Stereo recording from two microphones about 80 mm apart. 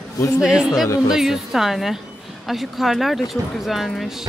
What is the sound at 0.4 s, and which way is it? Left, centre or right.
Speech, centre.